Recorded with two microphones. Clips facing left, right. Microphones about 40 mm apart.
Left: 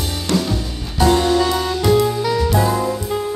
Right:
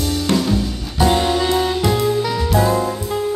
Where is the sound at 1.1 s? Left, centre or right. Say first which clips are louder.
Left 2 dB; centre.